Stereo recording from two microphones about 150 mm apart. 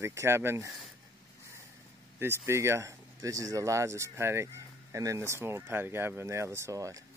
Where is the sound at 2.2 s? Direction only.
15° right (ahead or behind).